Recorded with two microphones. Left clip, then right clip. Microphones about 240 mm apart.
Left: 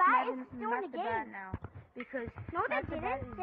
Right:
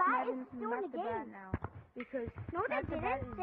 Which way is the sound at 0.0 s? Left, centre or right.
Left.